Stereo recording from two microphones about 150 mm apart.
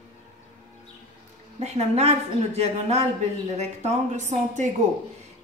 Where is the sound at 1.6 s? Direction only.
45° right (ahead or behind).